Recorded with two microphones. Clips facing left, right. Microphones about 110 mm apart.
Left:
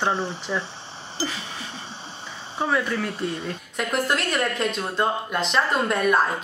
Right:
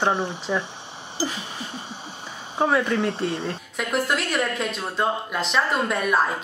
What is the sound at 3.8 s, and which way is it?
Speech, centre (ahead or behind).